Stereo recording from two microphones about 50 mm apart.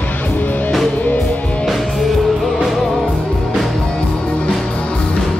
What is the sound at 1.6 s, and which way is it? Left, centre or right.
Music, centre.